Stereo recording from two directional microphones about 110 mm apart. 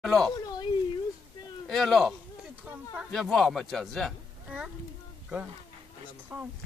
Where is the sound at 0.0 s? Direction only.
Centre (ahead or behind).